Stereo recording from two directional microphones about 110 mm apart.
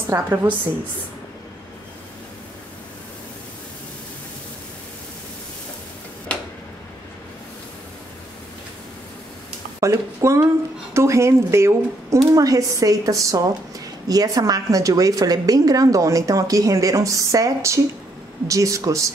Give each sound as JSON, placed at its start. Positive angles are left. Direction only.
{"t": 0.1, "sound": "speech", "side_deg": -25}
{"t": 9.8, "sound": "a woman's voice", "side_deg": -25}